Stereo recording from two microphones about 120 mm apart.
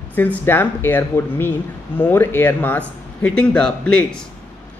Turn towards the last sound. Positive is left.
turn(degrees=10)  # may be behind; listen again after turning